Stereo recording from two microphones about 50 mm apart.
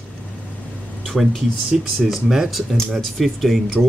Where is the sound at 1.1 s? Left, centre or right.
Centre.